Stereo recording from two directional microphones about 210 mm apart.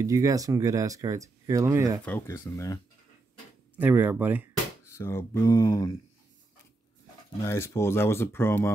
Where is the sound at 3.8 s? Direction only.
10° right (ahead or behind).